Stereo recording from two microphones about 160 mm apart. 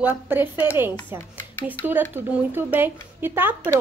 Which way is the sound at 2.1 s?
15° right (ahead or behind).